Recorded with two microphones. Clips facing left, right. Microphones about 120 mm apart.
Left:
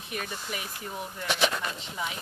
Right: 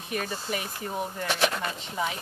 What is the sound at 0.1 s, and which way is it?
Speech, 35° right (ahead or behind).